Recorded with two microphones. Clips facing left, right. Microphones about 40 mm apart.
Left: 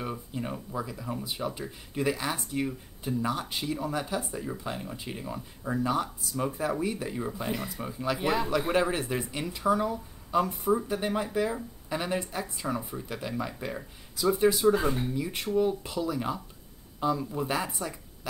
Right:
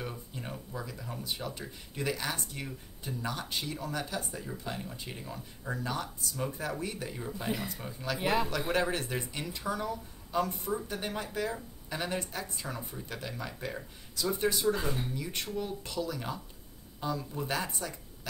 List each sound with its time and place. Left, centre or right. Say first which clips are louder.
0.1 s speech: left 7 dB; centre
8.2 s speech: even; centre
8.6 s speech: left 4 dB; centre
10.7 s speech: left 7 dB; centre